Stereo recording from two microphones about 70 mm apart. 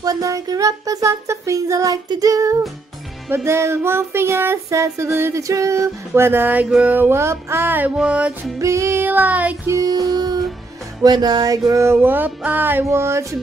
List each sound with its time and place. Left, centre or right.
0.0 s a sound: right
2.0 s music: right
3.4 s female singing: right
4.6 s a sound: right
6.8 s music: right
8.5 s a sound: right
9.0 s music: right
9.8 s music: right
11.8 s female singing: right
12.8 s female singing: right